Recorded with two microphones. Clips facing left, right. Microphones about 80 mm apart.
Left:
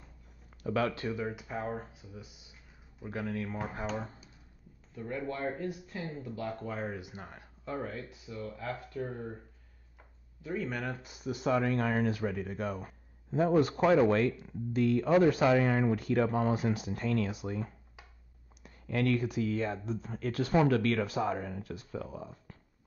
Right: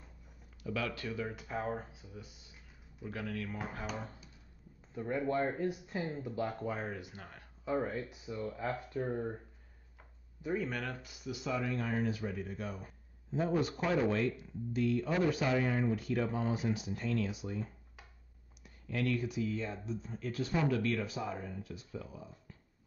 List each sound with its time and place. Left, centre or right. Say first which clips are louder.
0.7 s speech: left 6 dB; left
1.3 s speech: left 1 dB; centre
3.0 s speech: left 4 dB; left
4.9 s speech: right 4 dB; centre
6.6 s speech: left 1 dB; centre
6.9 s speech: left 2 dB; centre
7.2 s speech: left 4 dB; centre
7.6 s speech: right 3 dB; centre
10.4 s speech: even; centre
10.9 s speech: left 5 dB; left
15.4 s speech: left 6 dB; left